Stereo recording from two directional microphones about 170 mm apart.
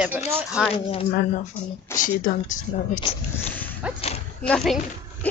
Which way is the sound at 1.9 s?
50° left (ahead or behind).